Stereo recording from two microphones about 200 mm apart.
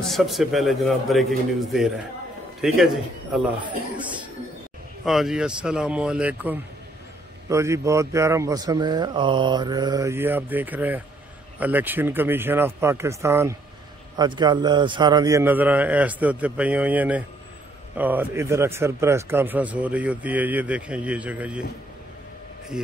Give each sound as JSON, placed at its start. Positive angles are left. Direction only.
{"t": 0.0, "sound": "speech", "side_deg": 0}
{"t": 2.6, "sound": "speech", "side_deg": 0}
{"t": 3.6, "sound": "a man's voice", "side_deg": -25}
{"t": 5.0, "sound": "speech", "side_deg": 0}